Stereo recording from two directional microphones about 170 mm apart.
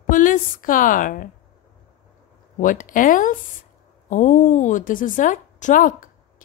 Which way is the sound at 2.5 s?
50° left (ahead or behind).